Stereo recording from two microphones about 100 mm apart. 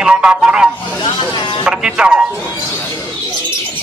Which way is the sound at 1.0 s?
50° left (ahead or behind).